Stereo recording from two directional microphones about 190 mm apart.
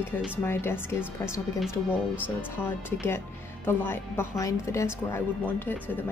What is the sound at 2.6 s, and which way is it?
A woman's voice, 10° left (ahead or behind).